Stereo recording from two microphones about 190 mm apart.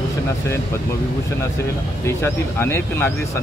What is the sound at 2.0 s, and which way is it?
Speech, 15° left (ahead or behind).